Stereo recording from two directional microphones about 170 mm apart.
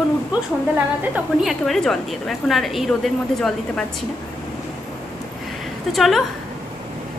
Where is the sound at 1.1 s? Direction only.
Centre (ahead or behind).